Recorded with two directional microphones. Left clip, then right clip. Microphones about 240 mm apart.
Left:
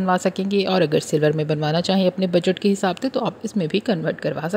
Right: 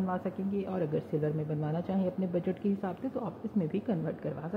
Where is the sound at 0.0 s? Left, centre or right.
Left.